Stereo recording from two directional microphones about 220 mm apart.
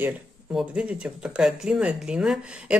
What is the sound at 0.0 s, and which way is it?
Speech, 5° right (ahead or behind).